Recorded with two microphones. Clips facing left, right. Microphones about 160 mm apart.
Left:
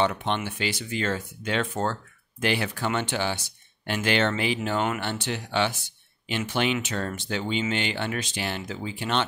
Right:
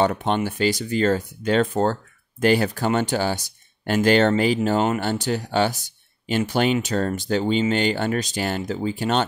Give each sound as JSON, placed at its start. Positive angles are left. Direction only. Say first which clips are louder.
{"t": 0.0, "sound": "speech", "louder": "right 5 dB", "side_deg": -40}